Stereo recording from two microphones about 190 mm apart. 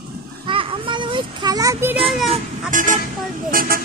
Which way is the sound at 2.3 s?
45° right (ahead or behind).